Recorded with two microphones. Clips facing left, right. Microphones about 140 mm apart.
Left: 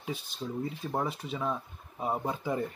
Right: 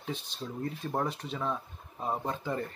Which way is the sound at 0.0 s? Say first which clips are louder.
Left 1 dB; 5° left (ahead or behind).